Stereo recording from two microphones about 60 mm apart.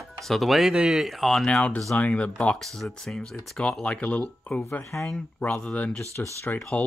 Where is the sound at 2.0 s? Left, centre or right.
Left.